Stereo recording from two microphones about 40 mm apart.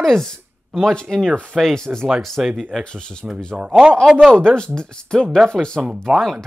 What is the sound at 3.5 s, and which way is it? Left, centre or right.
Speech, centre.